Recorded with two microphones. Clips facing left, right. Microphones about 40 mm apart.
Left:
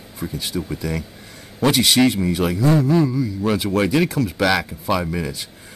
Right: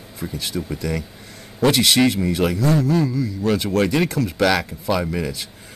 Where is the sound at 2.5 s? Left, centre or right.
Centre.